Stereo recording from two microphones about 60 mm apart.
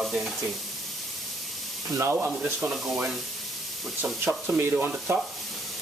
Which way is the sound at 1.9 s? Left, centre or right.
Right.